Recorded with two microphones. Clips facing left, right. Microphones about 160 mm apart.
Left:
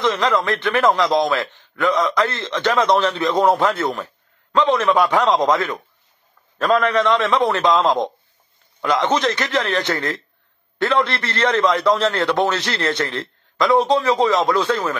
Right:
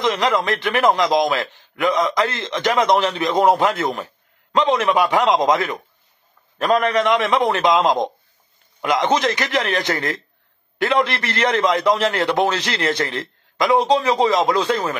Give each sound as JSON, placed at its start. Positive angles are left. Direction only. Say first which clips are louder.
{"t": 0.0, "sound": "a man's voice", "louder": "even", "side_deg": -15}